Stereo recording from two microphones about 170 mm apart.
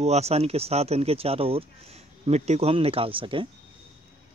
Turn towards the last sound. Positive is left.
turn(degrees=-30)  # may be behind; listen again after turning